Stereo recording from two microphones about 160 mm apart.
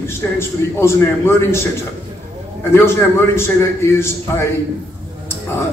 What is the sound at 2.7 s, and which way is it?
A man's voice, 15° left (ahead or behind).